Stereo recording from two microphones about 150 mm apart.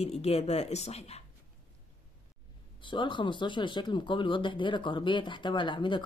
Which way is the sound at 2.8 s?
30° left (ahead or behind).